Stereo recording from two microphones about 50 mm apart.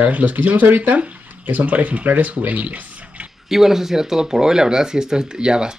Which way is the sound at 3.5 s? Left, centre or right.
Centre.